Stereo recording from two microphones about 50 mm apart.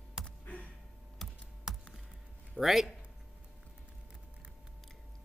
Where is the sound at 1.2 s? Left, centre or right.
Centre.